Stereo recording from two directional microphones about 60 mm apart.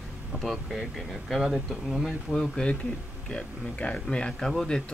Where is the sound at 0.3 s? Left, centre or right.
Centre.